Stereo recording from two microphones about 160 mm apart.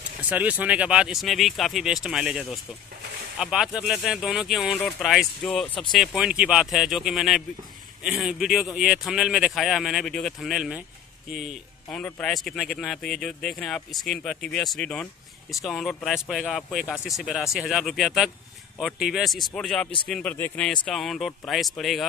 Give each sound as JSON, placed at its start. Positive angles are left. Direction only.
{"t": 0.3, "sound": "speech", "side_deg": -10}